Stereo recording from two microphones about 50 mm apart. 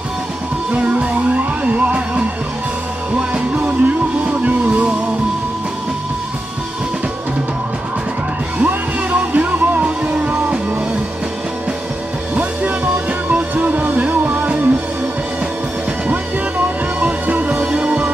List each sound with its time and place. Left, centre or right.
0.7 s music: right
3.2 s music: right
8.5 s music: right
12.4 s music: right
16.1 s music: right